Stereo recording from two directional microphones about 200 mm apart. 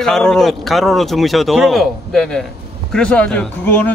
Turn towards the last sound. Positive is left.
turn(degrees=10)  # may be behind; listen again after turning